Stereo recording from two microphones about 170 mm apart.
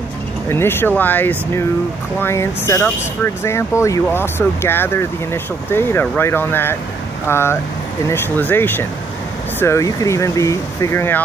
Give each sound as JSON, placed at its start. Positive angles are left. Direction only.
{"t": 0.5, "sound": "speech", "side_deg": 15}